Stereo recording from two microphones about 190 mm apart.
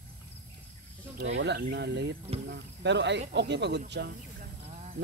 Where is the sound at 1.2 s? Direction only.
70° right (ahead or behind).